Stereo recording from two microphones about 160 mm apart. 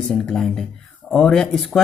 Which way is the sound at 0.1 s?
Centre (ahead or behind).